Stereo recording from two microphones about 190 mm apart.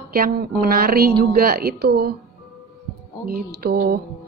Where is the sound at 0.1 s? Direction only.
50° right (ahead or behind).